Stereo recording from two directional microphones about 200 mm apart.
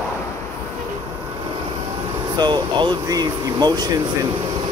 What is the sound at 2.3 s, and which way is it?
Speech, 20° right (ahead or behind).